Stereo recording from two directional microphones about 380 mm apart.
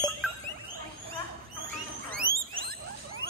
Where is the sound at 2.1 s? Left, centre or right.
Right.